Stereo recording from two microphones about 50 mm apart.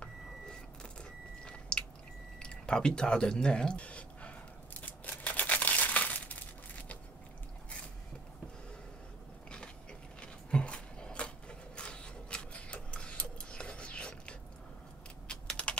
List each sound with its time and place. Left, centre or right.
1.4 s chewing: centre
2.4 s speech: centre
4.8 s crumpling: left
10.2 s a sound: left
15.2 s typing: left